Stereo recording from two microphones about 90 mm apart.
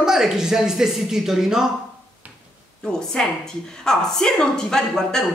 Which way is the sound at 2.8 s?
5° left (ahead or behind).